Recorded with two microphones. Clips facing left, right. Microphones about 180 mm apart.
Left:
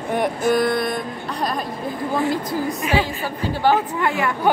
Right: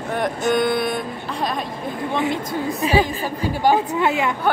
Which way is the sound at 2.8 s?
35° right (ahead or behind).